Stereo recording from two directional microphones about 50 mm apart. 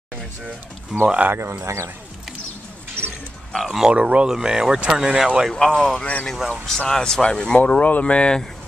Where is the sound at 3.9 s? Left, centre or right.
Right.